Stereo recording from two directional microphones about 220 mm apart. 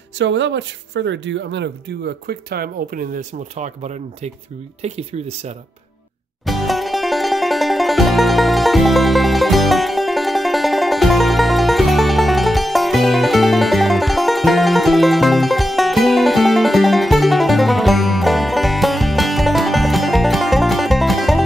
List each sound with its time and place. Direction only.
0.2 s speech: 55° right (ahead or behind); by 5.5 s 30° right (ahead or behind)
6.4 s music: centre (ahead or behind)